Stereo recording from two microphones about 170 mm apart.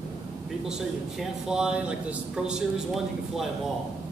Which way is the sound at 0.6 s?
5° right (ahead or behind).